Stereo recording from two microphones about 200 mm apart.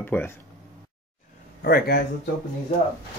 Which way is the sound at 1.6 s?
50° left (ahead or behind).